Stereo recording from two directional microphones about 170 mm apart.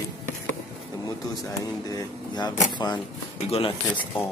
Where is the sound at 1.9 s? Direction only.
20° left (ahead or behind).